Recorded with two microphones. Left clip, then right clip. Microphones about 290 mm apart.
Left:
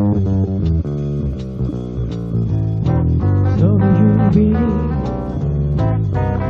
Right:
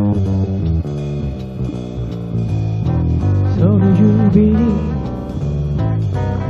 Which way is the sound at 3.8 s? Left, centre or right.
Right.